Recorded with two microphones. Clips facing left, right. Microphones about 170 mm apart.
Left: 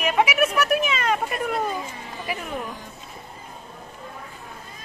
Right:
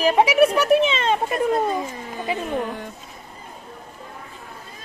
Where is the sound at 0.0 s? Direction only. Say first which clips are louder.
Right 5 dB; 30° right (ahead or behind).